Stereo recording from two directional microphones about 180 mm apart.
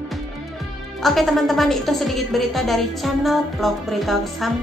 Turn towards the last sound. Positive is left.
turn(degrees=0)  # may be behind; listen again after turning